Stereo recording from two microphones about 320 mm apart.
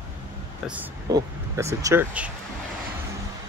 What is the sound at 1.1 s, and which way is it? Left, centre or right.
Speech, centre.